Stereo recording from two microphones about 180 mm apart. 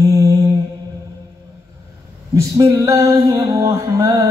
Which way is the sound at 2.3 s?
20° right (ahead or behind).